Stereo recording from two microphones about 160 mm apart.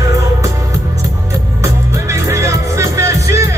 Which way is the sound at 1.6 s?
20° right (ahead or behind).